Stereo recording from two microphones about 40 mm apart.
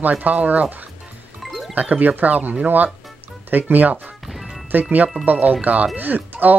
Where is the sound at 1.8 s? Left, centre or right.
Right.